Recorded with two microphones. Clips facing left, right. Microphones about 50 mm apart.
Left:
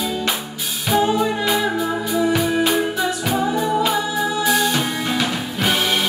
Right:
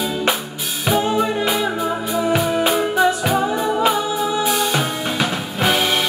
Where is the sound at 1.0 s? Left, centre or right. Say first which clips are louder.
Even; right.